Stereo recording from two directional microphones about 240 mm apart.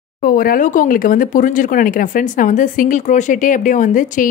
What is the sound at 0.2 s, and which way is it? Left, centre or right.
Speech, left.